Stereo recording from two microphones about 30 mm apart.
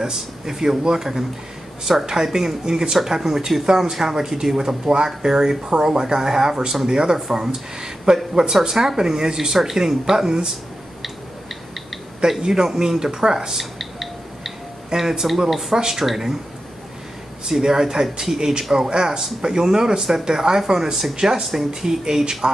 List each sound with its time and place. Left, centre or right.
0.0 s speech: centre
9.6 s speech: centre
12.4 s speech: centre
13.6 s music: centre
15.0 s speech: centre
17.5 s speech: centre